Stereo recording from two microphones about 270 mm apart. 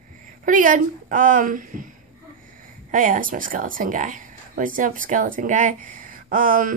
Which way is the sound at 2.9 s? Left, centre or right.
Right.